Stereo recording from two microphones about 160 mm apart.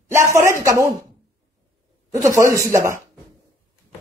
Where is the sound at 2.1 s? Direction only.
20° right (ahead or behind).